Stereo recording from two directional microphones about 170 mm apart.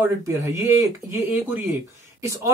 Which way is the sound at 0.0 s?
15° right (ahead or behind).